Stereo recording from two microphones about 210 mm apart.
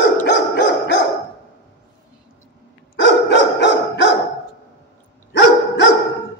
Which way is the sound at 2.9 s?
60° left (ahead or behind).